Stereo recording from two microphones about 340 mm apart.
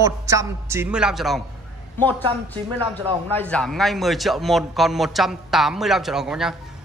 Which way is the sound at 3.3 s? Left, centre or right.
Centre.